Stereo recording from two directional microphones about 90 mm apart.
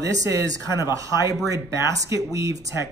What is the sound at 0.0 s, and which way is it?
Speech, 40° right (ahead or behind).